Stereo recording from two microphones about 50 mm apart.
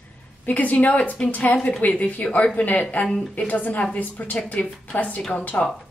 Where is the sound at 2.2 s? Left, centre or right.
Left.